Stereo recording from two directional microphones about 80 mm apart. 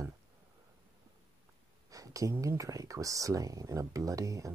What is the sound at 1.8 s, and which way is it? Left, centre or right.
Speech, right.